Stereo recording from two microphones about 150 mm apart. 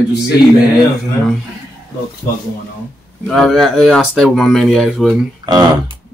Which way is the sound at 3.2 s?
5° left (ahead or behind).